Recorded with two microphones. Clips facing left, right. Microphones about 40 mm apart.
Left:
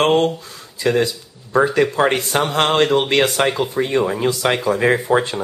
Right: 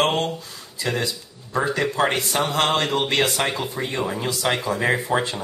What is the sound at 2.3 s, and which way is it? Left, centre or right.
Speech, left.